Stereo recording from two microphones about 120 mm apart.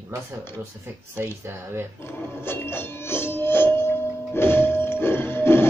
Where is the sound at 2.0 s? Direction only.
20° left (ahead or behind).